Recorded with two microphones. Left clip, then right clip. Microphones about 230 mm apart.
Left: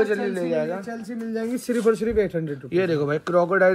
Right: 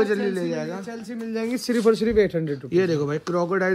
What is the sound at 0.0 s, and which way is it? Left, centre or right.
Speech, centre.